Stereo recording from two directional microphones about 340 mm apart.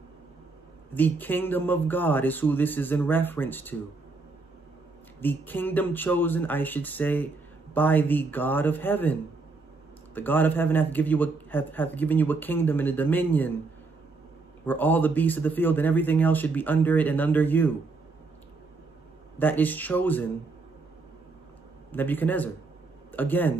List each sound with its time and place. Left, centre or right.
0.9 s a man's voice: centre
5.2 s a man's voice: centre
14.7 s a man's voice: centre
19.3 s a man's voice: centre
21.9 s a man's voice: centre